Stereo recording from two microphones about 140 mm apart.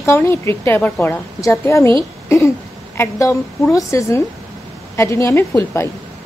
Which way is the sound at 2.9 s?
20° left (ahead or behind).